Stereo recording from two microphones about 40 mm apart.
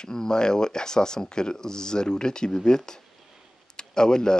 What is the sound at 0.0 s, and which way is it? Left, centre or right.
Speech, centre.